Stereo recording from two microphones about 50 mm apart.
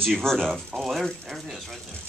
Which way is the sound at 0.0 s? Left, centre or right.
Centre.